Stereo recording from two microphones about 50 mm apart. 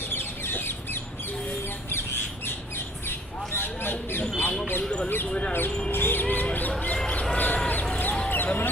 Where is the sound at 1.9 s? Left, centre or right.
Left.